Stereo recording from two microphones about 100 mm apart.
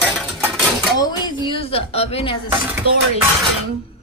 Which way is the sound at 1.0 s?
45° left (ahead or behind).